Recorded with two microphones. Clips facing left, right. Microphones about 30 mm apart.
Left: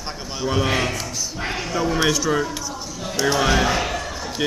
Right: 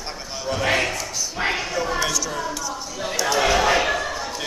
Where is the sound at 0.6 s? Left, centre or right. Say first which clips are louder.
Right 5 dB; centre.